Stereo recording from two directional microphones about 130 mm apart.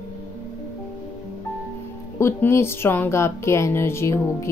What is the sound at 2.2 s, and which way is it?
Speech, 20° left (ahead or behind).